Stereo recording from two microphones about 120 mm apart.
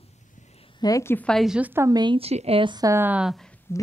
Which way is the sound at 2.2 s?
60° right (ahead or behind).